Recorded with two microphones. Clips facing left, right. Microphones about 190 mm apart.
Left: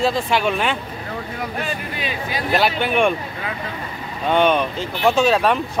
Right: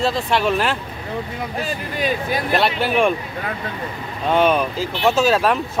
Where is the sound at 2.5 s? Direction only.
Centre (ahead or behind).